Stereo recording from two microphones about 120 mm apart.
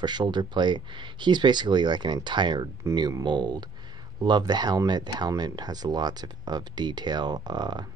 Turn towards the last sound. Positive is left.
turn(degrees=-35)  # may be behind; listen again after turning